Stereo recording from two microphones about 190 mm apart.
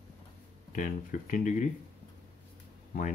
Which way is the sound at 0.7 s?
45° left (ahead or behind).